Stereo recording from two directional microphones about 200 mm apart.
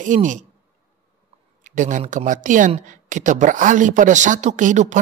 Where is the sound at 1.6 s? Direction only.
40° right (ahead or behind).